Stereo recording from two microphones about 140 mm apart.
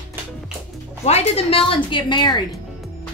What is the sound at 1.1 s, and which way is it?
A woman's voice, 45° left (ahead or behind).